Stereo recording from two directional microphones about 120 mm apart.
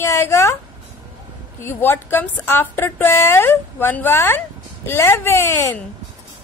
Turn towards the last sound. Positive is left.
turn(degrees=20)  # may be behind; listen again after turning